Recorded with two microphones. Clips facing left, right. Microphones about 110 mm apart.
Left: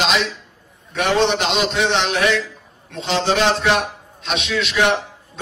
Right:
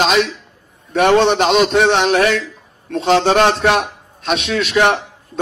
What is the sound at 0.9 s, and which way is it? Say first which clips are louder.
A man's voice: right 6 dB; 50° right (ahead or behind).